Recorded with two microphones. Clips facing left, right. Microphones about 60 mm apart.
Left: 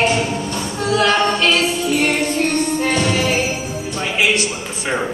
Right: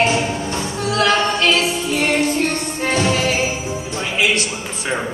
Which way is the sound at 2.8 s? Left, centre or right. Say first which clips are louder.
Right 5 dB; centre.